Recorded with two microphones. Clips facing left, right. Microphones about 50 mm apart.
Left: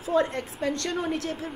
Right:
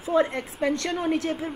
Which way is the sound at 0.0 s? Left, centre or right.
Centre.